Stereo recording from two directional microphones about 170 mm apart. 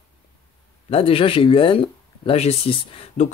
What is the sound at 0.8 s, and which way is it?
Speech, 35° left (ahead or behind).